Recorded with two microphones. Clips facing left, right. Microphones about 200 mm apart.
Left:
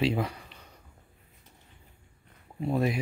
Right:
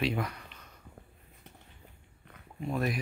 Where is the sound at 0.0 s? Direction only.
30° left (ahead or behind).